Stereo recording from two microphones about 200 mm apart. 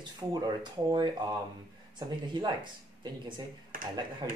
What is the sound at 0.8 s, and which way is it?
Speech, 20° right (ahead or behind).